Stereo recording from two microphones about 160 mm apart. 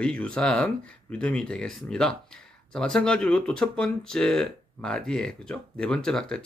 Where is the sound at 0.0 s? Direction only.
5° left (ahead or behind).